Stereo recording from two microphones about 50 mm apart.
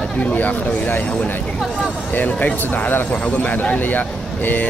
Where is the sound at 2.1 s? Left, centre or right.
Left.